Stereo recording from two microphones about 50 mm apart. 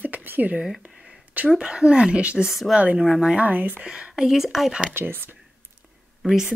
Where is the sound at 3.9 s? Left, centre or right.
Centre.